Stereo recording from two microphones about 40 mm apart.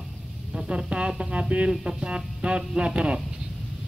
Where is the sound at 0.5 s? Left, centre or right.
Centre.